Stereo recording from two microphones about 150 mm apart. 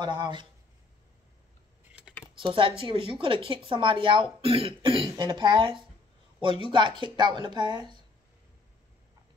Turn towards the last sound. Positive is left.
turn(degrees=-30)  # may be behind; listen again after turning